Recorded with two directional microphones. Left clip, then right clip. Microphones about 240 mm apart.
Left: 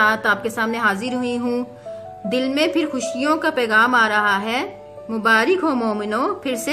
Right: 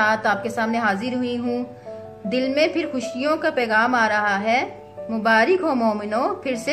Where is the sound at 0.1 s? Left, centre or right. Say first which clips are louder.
Left 1 dB; left.